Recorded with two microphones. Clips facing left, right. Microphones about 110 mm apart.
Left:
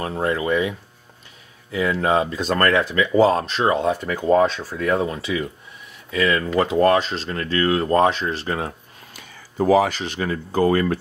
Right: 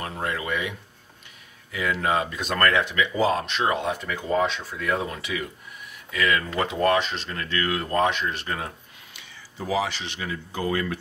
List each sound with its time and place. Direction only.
0.0 s speech: 30° left (ahead or behind)
9.1 s speech: 45° left (ahead or behind)